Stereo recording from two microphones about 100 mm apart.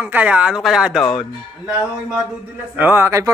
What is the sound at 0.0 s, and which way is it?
Speech, 15° right (ahead or behind).